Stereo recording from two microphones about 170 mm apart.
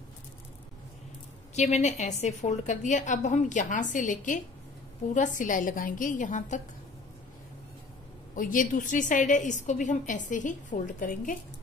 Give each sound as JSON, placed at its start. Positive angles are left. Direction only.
{"t": 1.5, "sound": "a woman's voice", "side_deg": 40}
{"t": 8.4, "sound": "a woman's voice", "side_deg": 50}